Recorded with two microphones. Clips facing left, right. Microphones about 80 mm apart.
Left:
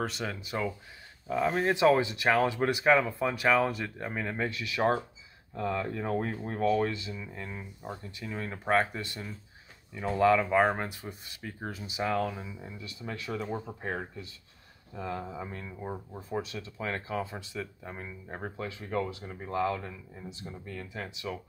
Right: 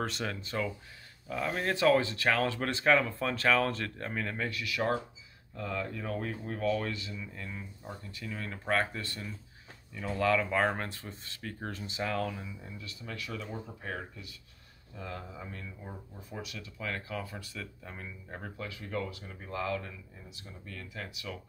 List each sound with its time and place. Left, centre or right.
0.0 s speech: centre; by 6.7 s left
6.7 s speech: left